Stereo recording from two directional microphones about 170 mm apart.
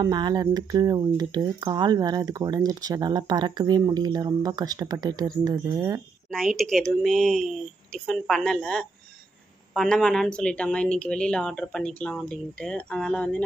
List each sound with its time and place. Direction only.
0.0 s speech: 25° right (ahead or behind)
6.3 s a woman's voice: centre (ahead or behind)